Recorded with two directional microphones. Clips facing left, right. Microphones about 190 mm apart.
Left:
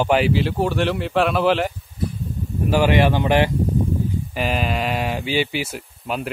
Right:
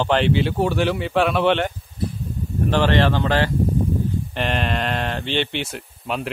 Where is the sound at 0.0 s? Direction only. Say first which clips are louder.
Left 1 dB; 5° left (ahead or behind).